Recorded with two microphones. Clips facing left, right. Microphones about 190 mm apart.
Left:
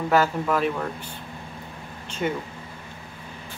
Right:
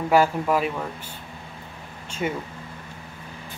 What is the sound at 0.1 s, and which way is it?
Speech, 10° right (ahead or behind).